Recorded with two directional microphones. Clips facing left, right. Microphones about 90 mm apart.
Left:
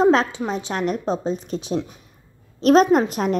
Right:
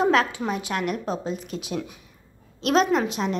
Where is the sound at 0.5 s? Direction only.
30° left (ahead or behind).